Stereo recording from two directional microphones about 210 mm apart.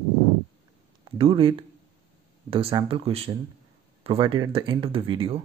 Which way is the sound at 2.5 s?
25° right (ahead or behind).